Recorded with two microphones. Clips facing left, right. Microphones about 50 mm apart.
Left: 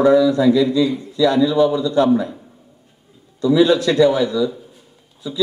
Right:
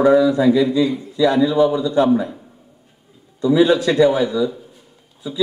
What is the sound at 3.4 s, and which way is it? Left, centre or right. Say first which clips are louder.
A man's voice: even; right.